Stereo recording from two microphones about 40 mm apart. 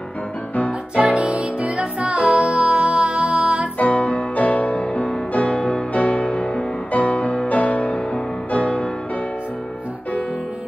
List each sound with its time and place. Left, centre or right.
0.7 s music: right
3.7 s music: left